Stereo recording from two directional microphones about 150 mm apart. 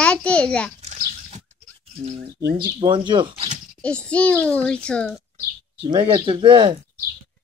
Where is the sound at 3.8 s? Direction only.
5° left (ahead or behind).